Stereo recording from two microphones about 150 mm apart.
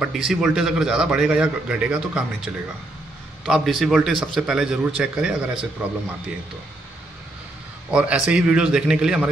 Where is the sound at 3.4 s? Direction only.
Centre (ahead or behind).